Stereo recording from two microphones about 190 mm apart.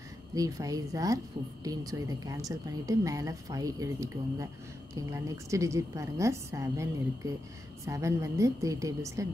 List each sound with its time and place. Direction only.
0.3 s a woman's voice: 20° right (ahead or behind)